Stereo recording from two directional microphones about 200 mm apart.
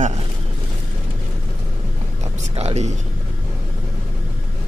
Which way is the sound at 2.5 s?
35° right (ahead or behind).